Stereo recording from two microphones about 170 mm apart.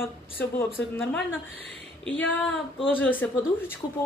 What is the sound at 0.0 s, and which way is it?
Speech, 15° left (ahead or behind).